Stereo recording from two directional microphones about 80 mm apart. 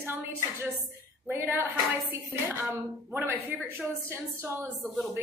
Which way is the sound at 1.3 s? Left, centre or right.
Right.